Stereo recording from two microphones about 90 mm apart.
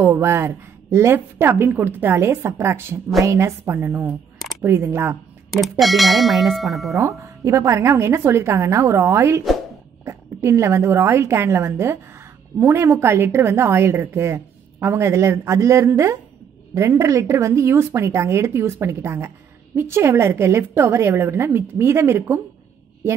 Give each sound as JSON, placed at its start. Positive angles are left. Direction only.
{"t": 0.0, "sound": "a woman's voice", "side_deg": -30}
{"t": 5.5, "sound": "ding", "side_deg": 0}
{"t": 7.0, "sound": "a woman's voice", "side_deg": -35}